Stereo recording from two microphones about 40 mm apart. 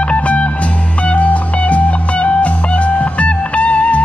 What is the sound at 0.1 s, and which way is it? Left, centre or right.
Music, left.